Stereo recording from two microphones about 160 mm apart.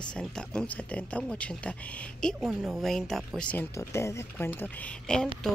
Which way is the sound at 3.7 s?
15° left (ahead or behind).